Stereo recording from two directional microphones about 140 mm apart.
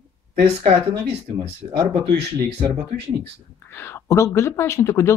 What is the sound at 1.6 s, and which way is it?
Speech, 25° right (ahead or behind).